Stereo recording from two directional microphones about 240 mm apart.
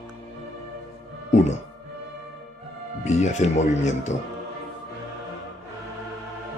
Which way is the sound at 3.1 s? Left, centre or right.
Left.